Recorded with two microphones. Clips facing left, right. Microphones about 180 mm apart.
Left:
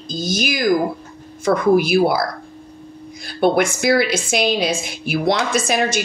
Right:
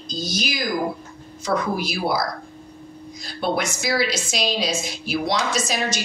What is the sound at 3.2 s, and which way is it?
A woman's voice, 55° left (ahead or behind).